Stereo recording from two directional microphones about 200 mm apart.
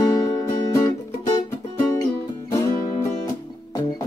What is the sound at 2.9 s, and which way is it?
Music, 30° left (ahead or behind).